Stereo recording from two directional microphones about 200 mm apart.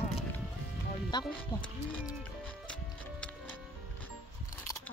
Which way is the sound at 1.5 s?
20° left (ahead or behind).